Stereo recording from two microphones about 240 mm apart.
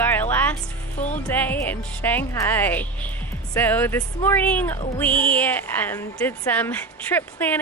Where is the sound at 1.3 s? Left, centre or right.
Centre.